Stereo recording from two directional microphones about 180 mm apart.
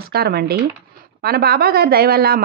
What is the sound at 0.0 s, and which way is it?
A woman's voice, 60° right (ahead or behind).